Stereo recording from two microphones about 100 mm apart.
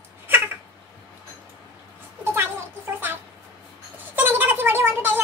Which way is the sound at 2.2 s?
25° right (ahead or behind).